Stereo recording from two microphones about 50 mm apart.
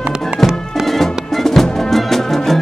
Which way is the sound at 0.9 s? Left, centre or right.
Centre.